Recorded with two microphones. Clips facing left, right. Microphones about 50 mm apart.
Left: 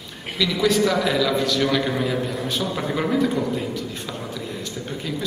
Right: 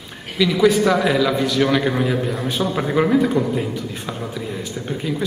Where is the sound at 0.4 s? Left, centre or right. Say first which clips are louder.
Right 4 dB; centre.